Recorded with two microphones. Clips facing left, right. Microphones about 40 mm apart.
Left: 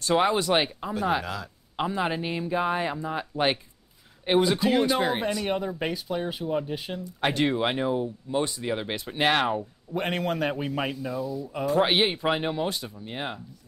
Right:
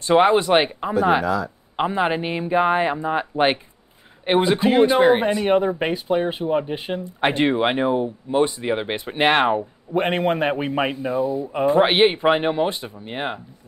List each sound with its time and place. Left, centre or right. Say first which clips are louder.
0.0 s speech: right 7 dB; right